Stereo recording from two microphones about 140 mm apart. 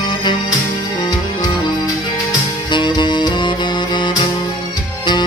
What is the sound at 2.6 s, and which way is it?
Music, 35° left (ahead or behind).